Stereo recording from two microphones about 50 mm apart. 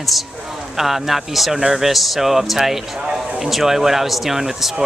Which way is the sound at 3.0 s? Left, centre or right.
Centre.